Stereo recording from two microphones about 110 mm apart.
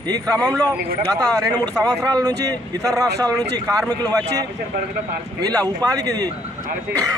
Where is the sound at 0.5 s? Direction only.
35° right (ahead or behind).